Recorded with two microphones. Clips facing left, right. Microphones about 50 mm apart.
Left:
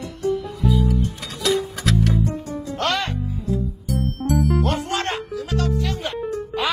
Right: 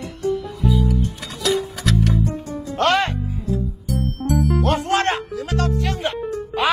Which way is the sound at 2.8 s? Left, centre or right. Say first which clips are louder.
Right 6 dB; right.